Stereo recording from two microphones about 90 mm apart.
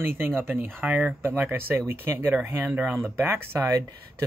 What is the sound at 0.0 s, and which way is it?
Speech, 25° right (ahead or behind).